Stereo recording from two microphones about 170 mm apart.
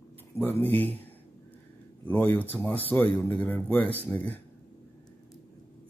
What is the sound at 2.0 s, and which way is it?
Speech, 10° left (ahead or behind).